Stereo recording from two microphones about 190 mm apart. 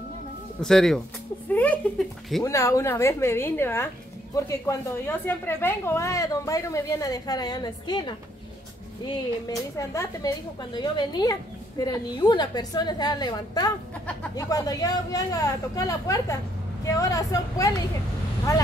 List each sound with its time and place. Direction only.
0.6 s speech: centre (ahead or behind)
2.4 s a woman's voice: 15° left (ahead or behind)
9.8 s a woman's voice: 15° left (ahead or behind)